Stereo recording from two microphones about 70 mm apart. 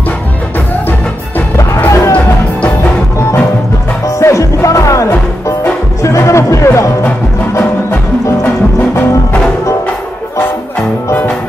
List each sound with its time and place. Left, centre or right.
1.9 s music: left
4.2 s music: left